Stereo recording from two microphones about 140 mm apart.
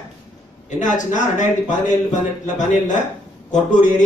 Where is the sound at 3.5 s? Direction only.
65° left (ahead or behind).